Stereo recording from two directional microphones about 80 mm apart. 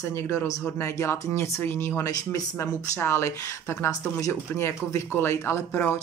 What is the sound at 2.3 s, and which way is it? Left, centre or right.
Speech, left.